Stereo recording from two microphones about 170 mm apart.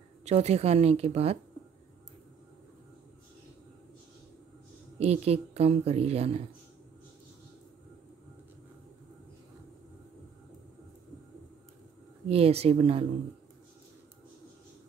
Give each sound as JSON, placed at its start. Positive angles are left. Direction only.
{"t": 0.2, "sound": "speech", "side_deg": -40}
{"t": 4.9, "sound": "speech", "side_deg": -40}
{"t": 12.3, "sound": "speech", "side_deg": -35}